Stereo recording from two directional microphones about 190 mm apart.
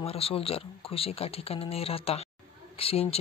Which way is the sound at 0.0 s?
30° left (ahead or behind).